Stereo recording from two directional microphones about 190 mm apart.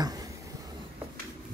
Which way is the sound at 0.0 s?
20° right (ahead or behind).